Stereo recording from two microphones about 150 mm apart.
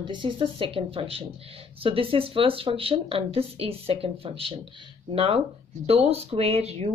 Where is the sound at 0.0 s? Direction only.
30° right (ahead or behind).